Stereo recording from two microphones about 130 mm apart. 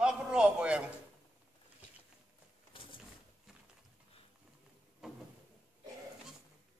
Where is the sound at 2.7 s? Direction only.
40° left (ahead or behind).